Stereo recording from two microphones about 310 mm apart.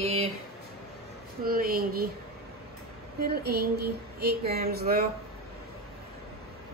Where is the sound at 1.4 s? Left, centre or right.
Right.